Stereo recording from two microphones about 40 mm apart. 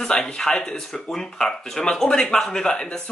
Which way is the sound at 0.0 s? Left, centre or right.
Centre.